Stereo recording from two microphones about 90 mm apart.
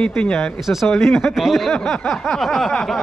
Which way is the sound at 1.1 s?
Centre (ahead or behind).